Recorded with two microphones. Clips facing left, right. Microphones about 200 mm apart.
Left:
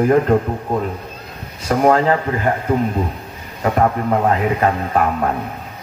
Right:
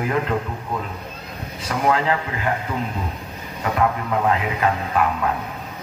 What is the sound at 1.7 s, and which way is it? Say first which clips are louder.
A man's voice: left 6 dB; 45° left (ahead or behind).